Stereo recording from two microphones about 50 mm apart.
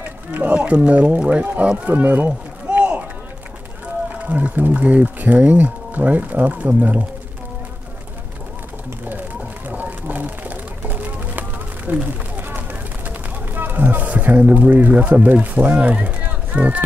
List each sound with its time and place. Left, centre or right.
0.3 s speech: right
4.1 s speech: right
9.7 s a sound: right
15.4 s speech: right